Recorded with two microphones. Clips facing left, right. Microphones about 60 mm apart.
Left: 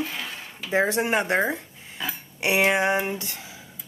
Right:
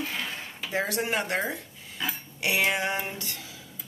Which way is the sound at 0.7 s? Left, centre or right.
Left.